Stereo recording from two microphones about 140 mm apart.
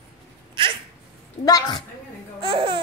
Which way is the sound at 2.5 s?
35° right (ahead or behind).